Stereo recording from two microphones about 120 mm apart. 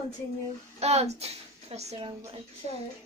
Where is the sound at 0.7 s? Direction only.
65° right (ahead or behind).